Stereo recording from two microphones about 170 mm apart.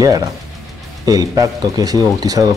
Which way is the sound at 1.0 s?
20° right (ahead or behind).